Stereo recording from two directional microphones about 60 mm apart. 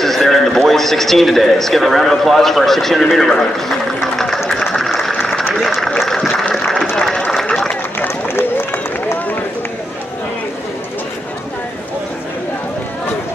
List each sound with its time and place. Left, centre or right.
0.0 s a man's voice: centre
4.7 s a sound: centre
7.0 s run: centre
8.0 s run: left